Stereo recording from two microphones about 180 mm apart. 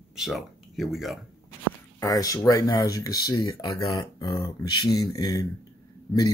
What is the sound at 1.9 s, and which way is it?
Speech, 20° left (ahead or behind).